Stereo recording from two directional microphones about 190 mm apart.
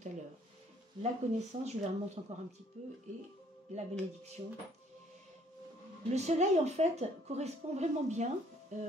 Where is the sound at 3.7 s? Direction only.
35° right (ahead or behind).